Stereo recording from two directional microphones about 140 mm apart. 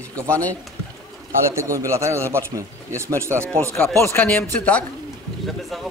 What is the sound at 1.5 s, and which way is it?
Speech, 20° right (ahead or behind).